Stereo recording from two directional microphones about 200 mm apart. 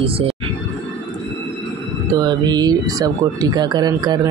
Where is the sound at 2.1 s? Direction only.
20° right (ahead or behind).